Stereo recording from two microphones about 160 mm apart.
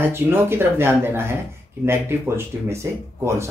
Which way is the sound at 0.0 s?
15° right (ahead or behind).